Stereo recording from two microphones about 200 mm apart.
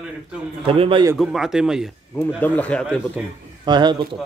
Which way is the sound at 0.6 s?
25° right (ahead or behind).